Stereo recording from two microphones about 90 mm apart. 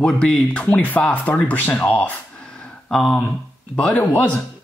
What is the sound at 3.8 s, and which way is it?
Speech, 15° left (ahead or behind).